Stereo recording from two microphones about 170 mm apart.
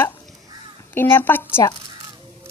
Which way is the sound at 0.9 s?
10° left (ahead or behind).